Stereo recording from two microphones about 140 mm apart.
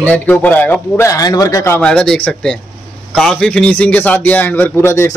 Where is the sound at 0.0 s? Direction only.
10° left (ahead or behind).